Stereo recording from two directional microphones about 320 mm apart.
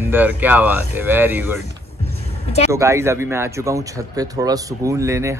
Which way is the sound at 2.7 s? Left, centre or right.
Centre.